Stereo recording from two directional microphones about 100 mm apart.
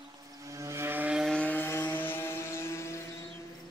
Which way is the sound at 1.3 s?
15° left (ahead or behind).